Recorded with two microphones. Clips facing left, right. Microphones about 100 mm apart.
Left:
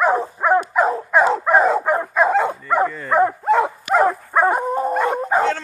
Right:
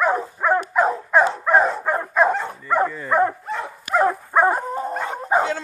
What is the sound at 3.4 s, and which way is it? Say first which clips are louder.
Dog: left 12 dB; 90° left.